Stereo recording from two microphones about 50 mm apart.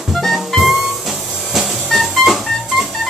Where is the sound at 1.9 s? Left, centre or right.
Centre.